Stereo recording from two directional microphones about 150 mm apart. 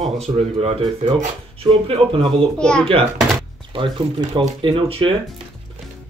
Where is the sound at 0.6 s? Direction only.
40° right (ahead or behind).